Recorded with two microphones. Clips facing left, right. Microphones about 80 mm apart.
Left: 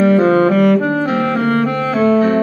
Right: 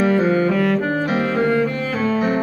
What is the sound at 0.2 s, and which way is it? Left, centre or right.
Saxophone, left.